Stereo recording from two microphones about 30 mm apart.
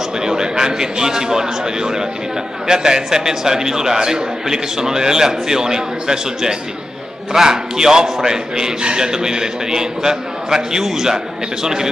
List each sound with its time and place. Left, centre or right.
0.2 s a man's voice: right